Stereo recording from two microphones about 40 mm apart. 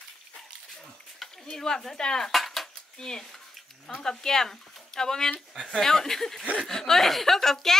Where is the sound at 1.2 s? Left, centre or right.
Centre.